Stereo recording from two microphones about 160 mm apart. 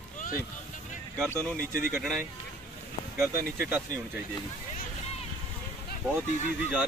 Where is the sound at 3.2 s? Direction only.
10° right (ahead or behind).